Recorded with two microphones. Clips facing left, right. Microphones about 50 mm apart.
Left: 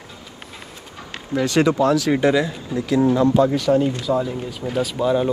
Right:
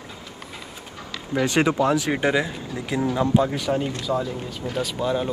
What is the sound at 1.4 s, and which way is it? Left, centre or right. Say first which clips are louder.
Speech: left 3 dB; right.